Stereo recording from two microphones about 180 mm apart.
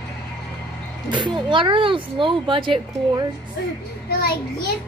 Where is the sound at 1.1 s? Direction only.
25° right (ahead or behind).